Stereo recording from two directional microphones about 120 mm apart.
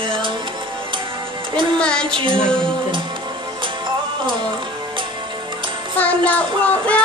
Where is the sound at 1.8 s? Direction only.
5° left (ahead or behind).